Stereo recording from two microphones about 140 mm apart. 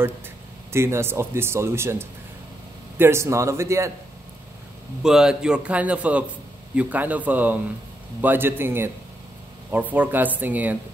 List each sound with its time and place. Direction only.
0.7 s speech: 20° right (ahead or behind)
5.0 s a man's voice: 5° right (ahead or behind)